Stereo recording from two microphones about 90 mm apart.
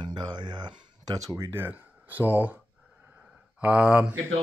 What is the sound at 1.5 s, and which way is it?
Speech, 20° right (ahead or behind).